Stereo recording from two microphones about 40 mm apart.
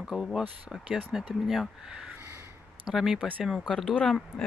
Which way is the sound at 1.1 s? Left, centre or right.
Centre.